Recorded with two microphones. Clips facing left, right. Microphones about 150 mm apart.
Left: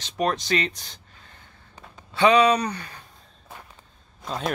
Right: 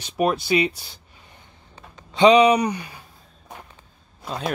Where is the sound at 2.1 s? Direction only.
15° right (ahead or behind).